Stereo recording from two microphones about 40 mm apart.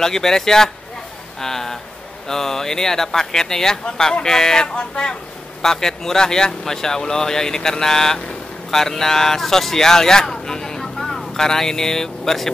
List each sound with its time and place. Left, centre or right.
0.0 s speech: centre